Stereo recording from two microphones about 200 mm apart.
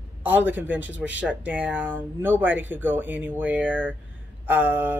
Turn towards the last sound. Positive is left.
turn(degrees=-10)  # may be behind; listen again after turning